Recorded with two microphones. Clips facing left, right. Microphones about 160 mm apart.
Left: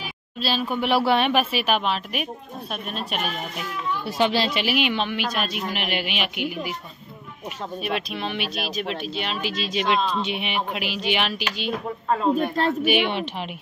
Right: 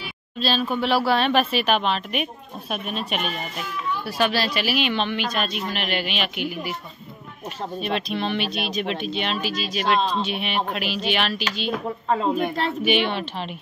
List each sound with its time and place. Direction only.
0.4 s a woman's voice: 10° left (ahead or behind)
4.0 s a woman's voice: 20° left (ahead or behind)
7.8 s speech: 5° left (ahead or behind)
9.4 s speech: 25° left (ahead or behind)
9.9 s speech: 35° right (ahead or behind)
10.2 s a woman's voice: 15° left (ahead or behind)
12.8 s a woman's voice: 10° left (ahead or behind)